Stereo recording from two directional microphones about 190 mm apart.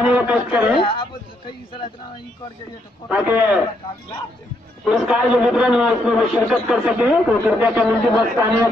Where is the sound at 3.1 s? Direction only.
10° right (ahead or behind).